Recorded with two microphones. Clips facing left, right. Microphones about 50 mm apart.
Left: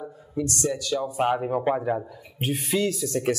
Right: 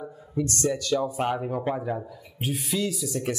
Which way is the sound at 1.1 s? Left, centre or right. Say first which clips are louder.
Left 3 dB; centre.